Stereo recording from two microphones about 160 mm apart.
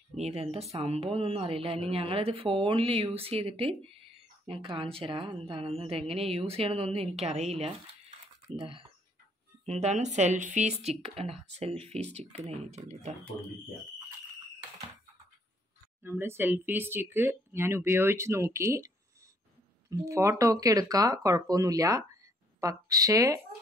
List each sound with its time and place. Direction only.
0.1 s a woman's voice: 40° right (ahead or behind)
16.0 s speech: 15° right (ahead or behind)
19.9 s speech: 20° right (ahead or behind)